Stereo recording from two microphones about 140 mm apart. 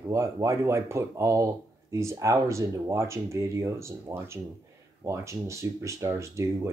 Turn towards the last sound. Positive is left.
turn(degrees=-20)  # may be behind; listen again after turning